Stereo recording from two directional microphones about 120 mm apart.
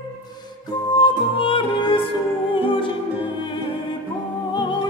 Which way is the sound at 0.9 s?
40° left (ahead or behind).